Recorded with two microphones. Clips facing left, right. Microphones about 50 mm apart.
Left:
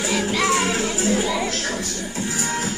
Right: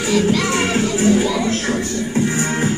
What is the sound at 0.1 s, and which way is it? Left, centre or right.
Music, centre.